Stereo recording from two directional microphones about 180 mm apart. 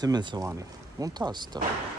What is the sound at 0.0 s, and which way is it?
Speech, 25° right (ahead or behind).